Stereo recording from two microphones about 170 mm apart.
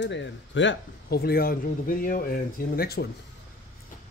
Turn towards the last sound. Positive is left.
turn(degrees=65)  # may be behind; listen again after turning